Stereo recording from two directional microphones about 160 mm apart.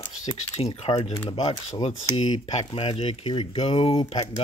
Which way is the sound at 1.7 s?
40° left (ahead or behind).